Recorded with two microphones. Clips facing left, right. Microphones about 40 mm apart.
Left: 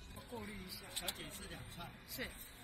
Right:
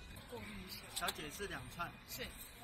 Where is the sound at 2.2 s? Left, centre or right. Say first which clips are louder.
Left 3 dB; centre.